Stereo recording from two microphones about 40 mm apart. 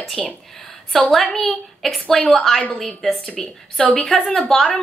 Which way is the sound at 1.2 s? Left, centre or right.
Centre.